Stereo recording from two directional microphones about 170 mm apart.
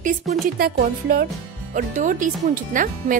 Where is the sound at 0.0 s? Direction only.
50° right (ahead or behind).